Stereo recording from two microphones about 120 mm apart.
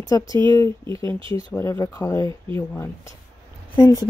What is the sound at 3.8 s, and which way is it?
Speech, 30° left (ahead or behind).